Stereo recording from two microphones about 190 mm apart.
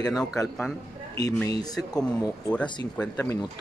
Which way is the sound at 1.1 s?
20° left (ahead or behind).